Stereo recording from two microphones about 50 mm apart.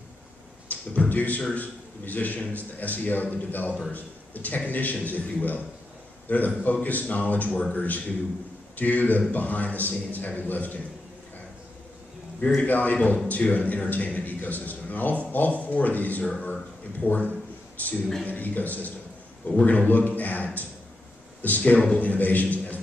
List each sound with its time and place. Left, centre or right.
0.7 s a man's voice: left
12.6 s a man's voice: left
22.1 s a man's voice: left